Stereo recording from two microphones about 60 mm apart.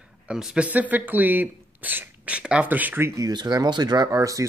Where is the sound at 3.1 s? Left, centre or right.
Right.